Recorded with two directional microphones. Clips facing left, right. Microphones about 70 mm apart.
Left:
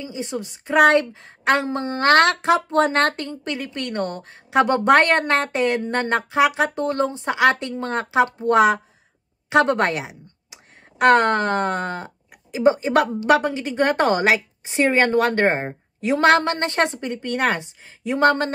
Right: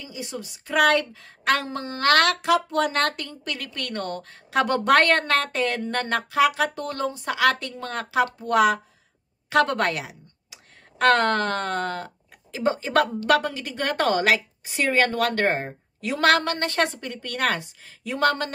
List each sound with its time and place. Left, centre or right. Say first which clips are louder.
0.0 s a woman's voice: left 6 dB; left